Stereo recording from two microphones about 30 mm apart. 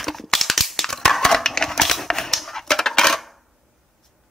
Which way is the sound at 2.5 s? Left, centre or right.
Centre.